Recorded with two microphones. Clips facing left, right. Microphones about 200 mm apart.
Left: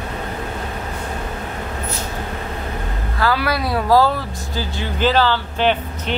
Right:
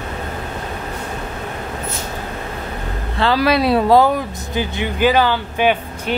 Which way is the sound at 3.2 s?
25° right (ahead or behind).